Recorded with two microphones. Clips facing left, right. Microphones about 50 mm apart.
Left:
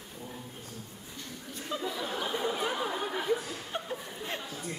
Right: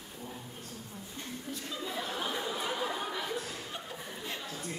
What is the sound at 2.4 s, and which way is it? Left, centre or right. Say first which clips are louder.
Chatter: left 3 dB; centre.